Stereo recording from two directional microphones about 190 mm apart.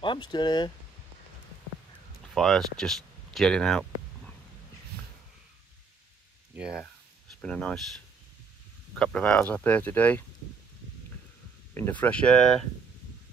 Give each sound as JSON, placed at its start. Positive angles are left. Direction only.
{"t": 0.0, "sound": "speech", "side_deg": 25}
{"t": 2.3, "sound": "speech", "side_deg": 0}
{"t": 6.5, "sound": "speech", "side_deg": -5}
{"t": 8.9, "sound": "speech", "side_deg": 5}
{"t": 11.7, "sound": "speech", "side_deg": 10}